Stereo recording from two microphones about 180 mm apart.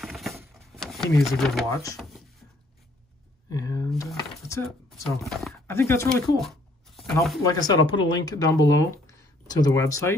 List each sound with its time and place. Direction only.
0.0 s a sound: centre (ahead or behind)
0.7 s speech: centre (ahead or behind)
1.7 s speech: 20° left (ahead or behind)
3.5 s a sound: 20° left (ahead or behind)
4.5 s speech: 15° left (ahead or behind)
5.2 s speech: centre (ahead or behind)
5.7 s speech: 15° left (ahead or behind)
6.3 s a sound: centre (ahead or behind)
7.4 s speech: 20° left (ahead or behind)